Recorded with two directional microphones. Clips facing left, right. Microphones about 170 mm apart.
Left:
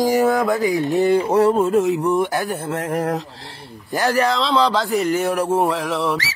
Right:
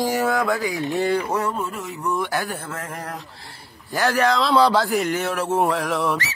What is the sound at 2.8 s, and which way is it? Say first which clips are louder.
Speech: left 11 dB; 40° left (ahead or behind).